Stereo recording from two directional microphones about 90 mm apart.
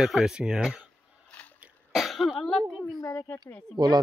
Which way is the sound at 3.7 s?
50° right (ahead or behind).